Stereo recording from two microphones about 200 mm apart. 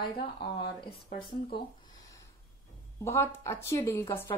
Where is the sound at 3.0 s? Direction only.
15° left (ahead or behind).